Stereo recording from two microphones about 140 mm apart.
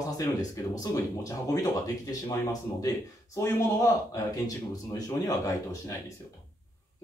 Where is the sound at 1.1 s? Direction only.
25° left (ahead or behind).